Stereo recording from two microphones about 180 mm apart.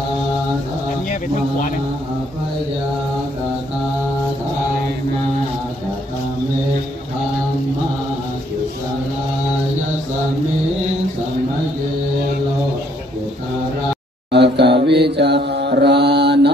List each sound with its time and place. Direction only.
14.3 s mantra: 70° right (ahead or behind)